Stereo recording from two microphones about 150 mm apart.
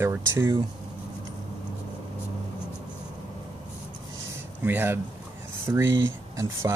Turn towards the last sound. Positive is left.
turn(degrees=-20)  # may be behind; listen again after turning